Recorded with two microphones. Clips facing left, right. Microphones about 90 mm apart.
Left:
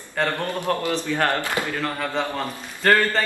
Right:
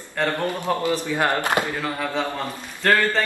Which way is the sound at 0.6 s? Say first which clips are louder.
Right 1 dB; 20° right (ahead or behind).